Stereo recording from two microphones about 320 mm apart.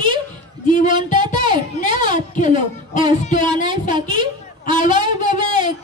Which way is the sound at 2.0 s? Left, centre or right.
Left.